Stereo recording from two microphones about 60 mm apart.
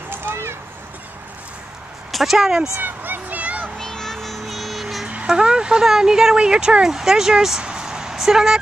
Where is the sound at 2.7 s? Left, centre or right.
Right.